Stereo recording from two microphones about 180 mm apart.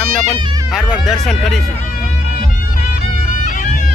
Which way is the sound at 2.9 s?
45° left (ahead or behind).